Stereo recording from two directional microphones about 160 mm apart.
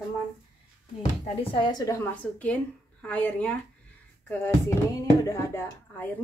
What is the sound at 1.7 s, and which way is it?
Speech, 20° left (ahead or behind).